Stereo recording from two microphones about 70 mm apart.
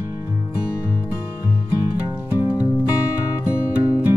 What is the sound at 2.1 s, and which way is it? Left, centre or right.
Music, left.